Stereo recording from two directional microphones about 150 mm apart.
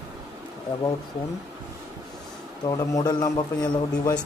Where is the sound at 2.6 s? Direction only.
25° left (ahead or behind).